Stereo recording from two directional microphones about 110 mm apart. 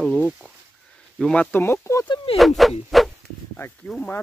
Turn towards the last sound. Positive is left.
turn(degrees=0)  # may be behind; listen again after turning